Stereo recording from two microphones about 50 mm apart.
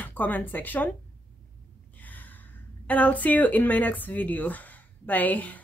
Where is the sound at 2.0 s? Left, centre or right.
Left.